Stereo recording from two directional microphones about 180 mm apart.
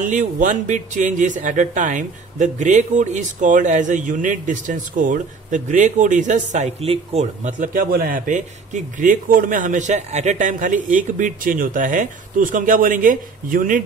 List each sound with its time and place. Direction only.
0.0 s speech: 45° right (ahead or behind)